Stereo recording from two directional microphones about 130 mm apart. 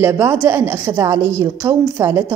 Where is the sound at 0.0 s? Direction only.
20° right (ahead or behind).